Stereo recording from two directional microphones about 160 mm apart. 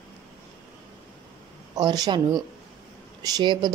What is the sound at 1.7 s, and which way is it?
Speech, 25° right (ahead or behind).